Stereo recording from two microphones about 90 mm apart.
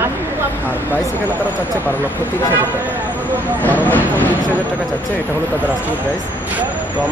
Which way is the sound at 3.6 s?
20° left (ahead or behind).